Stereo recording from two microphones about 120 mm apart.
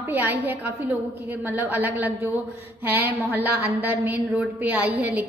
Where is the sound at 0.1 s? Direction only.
15° right (ahead or behind).